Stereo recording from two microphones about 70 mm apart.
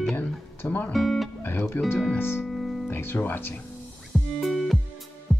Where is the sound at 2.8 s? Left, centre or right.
Left.